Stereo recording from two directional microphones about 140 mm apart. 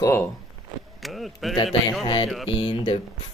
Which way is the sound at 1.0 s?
Centre (ahead or behind).